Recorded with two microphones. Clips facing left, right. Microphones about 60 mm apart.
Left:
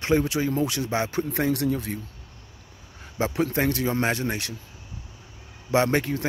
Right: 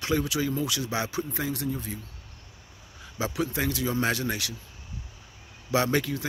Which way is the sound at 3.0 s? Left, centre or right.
Left.